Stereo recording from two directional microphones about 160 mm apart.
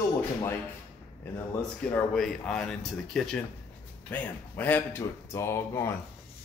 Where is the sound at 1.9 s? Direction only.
5° left (ahead or behind).